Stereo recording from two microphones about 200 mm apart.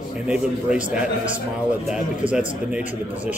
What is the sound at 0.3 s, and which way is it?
Speech, 5° right (ahead or behind).